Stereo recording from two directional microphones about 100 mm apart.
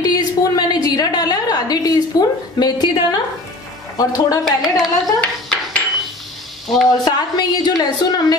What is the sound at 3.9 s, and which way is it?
Speech, 40° left (ahead or behind).